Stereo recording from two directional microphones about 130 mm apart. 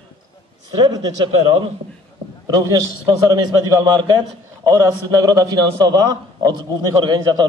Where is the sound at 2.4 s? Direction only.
30° right (ahead or behind).